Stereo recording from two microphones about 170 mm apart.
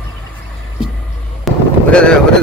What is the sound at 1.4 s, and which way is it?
Fireworks, 5° left (ahead or behind).